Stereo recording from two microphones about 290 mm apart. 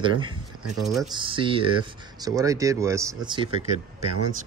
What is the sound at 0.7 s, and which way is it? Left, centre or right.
Speech, centre.